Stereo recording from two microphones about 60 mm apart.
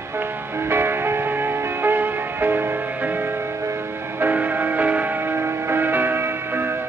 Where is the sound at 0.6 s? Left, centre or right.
Right.